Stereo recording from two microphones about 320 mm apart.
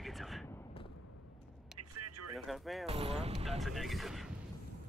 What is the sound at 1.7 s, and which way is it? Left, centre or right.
Vehicle, right.